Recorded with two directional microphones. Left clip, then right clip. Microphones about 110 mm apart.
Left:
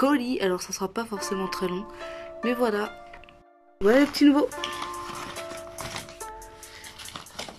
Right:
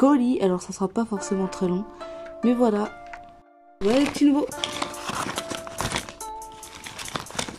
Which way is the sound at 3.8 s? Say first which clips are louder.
Left 1 dB; 20° right (ahead or behind).